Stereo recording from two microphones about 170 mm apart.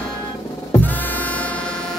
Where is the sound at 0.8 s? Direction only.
10° left (ahead or behind).